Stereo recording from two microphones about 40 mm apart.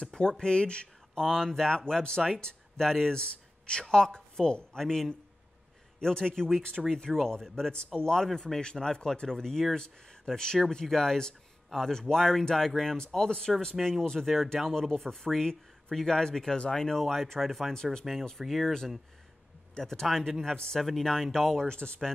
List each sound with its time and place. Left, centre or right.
0.0 s speech: left
1.2 s speech: centre
4.7 s speech: centre
8.3 s speech: centre
8.7 s speech: centre
17.0 s speech: centre
19.8 s speech: centre
20.8 s speech: centre
21.6 s speech: left